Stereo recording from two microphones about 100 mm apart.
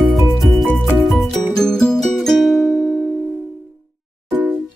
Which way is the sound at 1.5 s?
5° left (ahead or behind).